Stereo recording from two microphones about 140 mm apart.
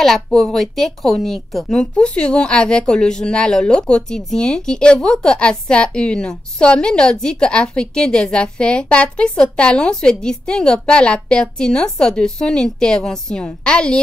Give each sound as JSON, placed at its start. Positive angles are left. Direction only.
{"t": 0.0, "sound": "speech", "side_deg": 5}